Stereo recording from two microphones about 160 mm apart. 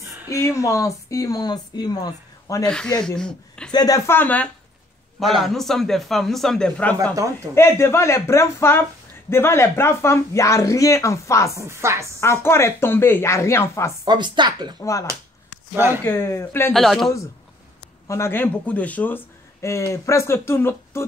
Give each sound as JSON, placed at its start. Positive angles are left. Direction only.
{"t": 0.3, "sound": "speech", "side_deg": 20}
{"t": 2.6, "sound": "speech", "side_deg": 5}
{"t": 3.7, "sound": "a man's voice", "side_deg": 20}
{"t": 11.5, "sound": "chopping", "side_deg": -15}
{"t": 12.2, "sound": "speech", "side_deg": 15}
{"t": 14.0, "sound": "speech", "side_deg": -30}
{"t": 14.8, "sound": "speech", "side_deg": 20}
{"t": 15.7, "sound": "chopping", "side_deg": -15}
{"t": 16.0, "sound": "speech", "side_deg": 15}
{"t": 16.7, "sound": "a man's voice", "side_deg": 0}
{"t": 18.0, "sound": "speech", "side_deg": 20}